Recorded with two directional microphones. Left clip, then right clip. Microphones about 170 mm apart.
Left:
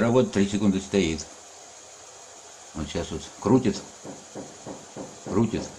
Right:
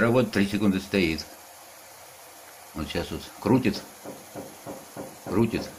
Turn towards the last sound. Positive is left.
turn(degrees=0)  # may be behind; listen again after turning